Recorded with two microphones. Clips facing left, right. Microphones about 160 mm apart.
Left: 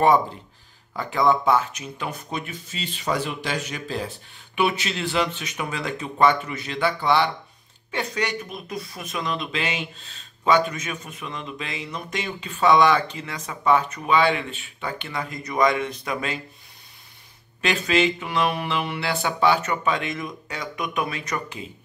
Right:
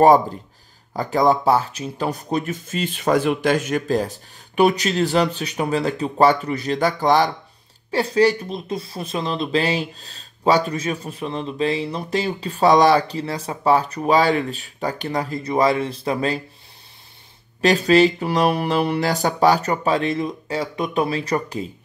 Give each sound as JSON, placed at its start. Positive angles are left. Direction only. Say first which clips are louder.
{"t": 0.9, "sound": "speech", "louder": "right 3 dB", "side_deg": -40}
{"t": 17.6, "sound": "speech", "louder": "right 7 dB", "side_deg": -35}